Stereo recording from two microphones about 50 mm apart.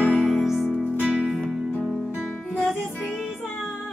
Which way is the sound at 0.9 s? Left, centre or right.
Left.